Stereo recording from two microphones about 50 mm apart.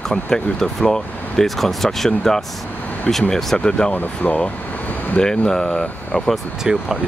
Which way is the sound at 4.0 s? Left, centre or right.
Left.